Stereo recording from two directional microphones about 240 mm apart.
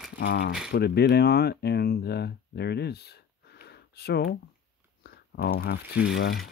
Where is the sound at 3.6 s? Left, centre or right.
Left.